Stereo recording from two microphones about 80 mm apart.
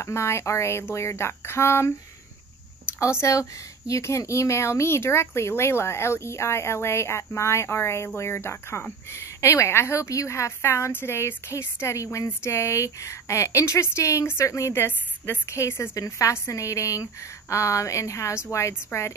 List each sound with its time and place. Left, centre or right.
0.0 s speech: left
3.0 s speech: left
14.9 s a woman's voice: left
15.5 s speech: left